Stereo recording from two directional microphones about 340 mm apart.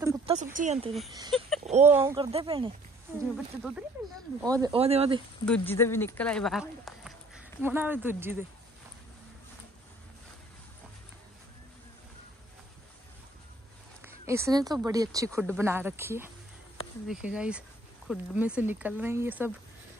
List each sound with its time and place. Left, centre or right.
0.0 s a sound: centre
1.3 s a sound: centre
1.9 s speech: centre
3.2 s speech: centre
5.6 s speech: centre
14.0 s speech: centre